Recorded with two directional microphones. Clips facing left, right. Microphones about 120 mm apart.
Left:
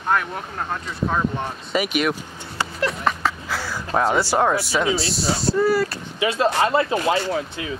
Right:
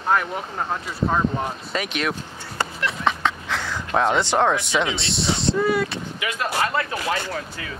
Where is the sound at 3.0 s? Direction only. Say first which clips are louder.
Even; 5° left (ahead or behind).